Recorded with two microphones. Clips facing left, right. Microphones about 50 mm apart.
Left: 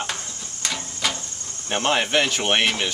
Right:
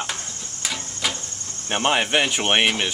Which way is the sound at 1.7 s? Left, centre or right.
Centre.